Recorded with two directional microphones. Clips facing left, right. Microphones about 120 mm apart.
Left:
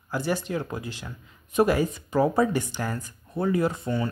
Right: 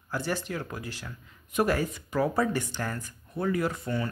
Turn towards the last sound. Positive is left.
turn(degrees=25)  # may be behind; listen again after turning